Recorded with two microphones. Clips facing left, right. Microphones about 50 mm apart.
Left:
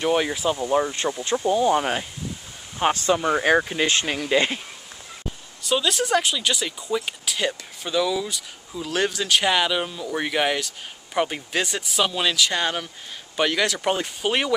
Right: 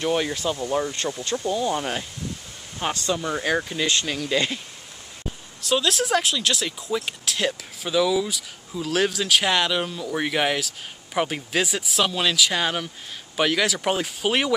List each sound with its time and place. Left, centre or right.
0.0 s speech: centre
5.6 s speech: centre